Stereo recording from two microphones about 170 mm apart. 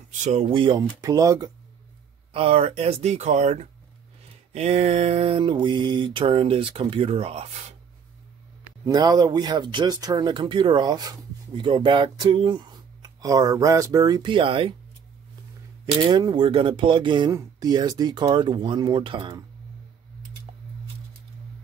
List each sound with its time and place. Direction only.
0.2 s speech: 40° right (ahead or behind); by 1.5 s 20° right (ahead or behind)
2.3 s mantra: 35° right (ahead or behind)
8.8 s speech: 20° right (ahead or behind)
15.8 s speech: 25° right (ahead or behind)
20.5 s a sound: 30° right (ahead or behind)